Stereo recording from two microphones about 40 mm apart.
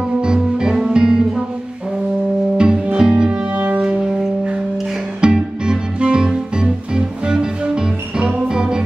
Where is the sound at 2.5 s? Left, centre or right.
Right.